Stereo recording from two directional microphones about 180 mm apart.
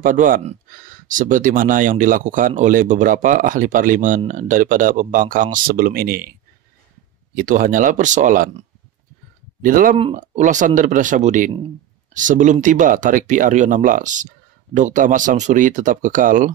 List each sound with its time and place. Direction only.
0.0 s speech: 45° right (ahead or behind)
7.3 s speech: 50° right (ahead or behind)
9.6 s speech: 50° right (ahead or behind)